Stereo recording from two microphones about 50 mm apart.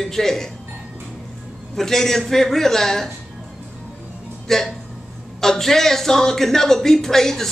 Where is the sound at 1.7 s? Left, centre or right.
Centre.